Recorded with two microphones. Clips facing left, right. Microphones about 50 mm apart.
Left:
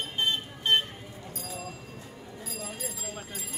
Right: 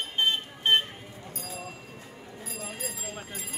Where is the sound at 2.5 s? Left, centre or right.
Right.